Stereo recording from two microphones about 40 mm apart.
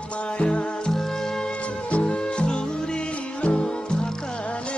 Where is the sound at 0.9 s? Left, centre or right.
Centre.